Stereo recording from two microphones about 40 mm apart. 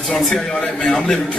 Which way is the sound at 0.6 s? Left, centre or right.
Left.